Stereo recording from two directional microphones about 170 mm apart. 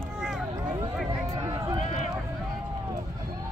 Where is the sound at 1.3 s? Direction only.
25° right (ahead or behind).